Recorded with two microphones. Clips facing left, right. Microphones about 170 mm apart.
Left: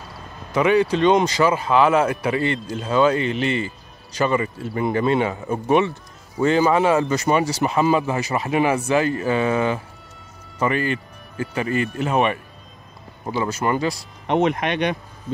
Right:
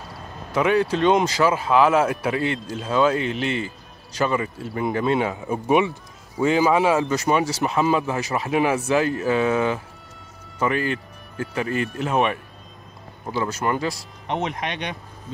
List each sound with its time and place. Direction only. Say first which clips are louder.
0.5 s speech: left 2 dB; centre (ahead or behind)
13.2 s speech: left 2 dB; 15° left (ahead or behind)
13.5 s speech: left 4 dB; centre (ahead or behind)
14.2 s speech: left 7 dB; 60° left (ahead or behind)